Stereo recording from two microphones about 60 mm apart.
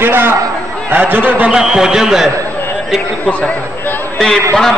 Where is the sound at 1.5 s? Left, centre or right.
Centre.